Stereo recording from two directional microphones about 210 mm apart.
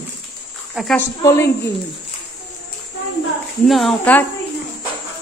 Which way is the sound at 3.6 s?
Centre (ahead or behind).